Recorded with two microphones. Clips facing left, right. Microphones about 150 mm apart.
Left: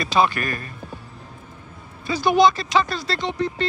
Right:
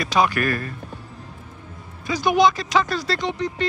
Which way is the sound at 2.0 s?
15° right (ahead or behind).